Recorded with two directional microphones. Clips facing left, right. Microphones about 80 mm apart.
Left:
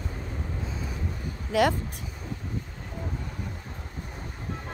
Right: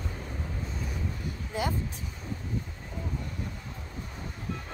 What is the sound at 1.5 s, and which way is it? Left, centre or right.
Speech, left.